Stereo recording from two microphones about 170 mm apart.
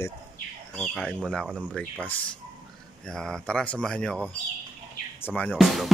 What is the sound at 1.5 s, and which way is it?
Speech, 10° right (ahead or behind).